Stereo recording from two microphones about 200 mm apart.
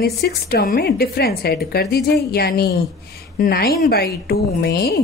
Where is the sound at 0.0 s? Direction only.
50° left (ahead or behind).